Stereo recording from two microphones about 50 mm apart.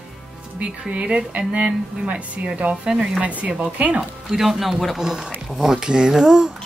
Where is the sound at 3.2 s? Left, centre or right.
Right.